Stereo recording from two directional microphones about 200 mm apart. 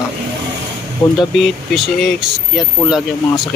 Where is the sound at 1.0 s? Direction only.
25° left (ahead or behind).